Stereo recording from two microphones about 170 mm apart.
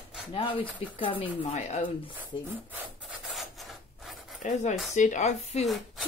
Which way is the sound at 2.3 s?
25° left (ahead or behind).